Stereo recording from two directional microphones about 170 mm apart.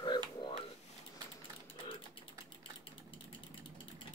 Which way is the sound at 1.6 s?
30° left (ahead or behind).